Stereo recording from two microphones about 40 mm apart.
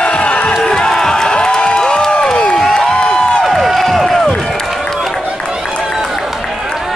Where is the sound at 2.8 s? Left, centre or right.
Left.